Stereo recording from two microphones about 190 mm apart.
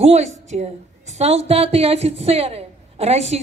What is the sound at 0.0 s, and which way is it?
A woman's voice, 35° right (ahead or behind).